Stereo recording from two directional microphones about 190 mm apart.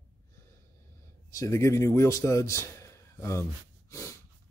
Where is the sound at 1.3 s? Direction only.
15° left (ahead or behind).